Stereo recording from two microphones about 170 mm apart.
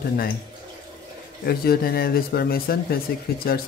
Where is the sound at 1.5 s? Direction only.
65° left (ahead or behind).